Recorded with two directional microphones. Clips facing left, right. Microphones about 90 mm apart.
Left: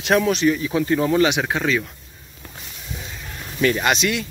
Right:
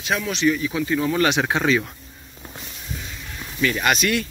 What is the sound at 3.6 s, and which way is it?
Speech, 25° left (ahead or behind).